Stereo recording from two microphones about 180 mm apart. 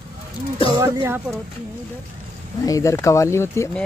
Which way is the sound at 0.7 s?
15° right (ahead or behind).